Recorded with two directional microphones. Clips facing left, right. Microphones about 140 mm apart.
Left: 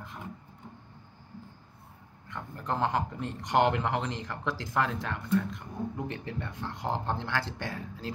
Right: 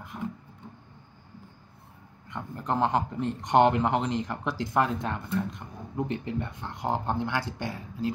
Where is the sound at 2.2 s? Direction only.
20° right (ahead or behind).